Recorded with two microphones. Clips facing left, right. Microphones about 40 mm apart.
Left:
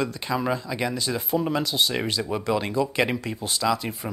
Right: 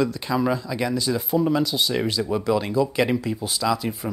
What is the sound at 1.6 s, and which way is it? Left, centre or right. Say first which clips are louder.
Speech: right 1 dB; centre.